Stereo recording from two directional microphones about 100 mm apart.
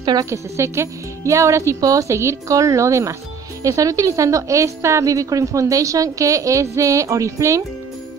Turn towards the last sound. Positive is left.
turn(degrees=-30)  # may be behind; listen again after turning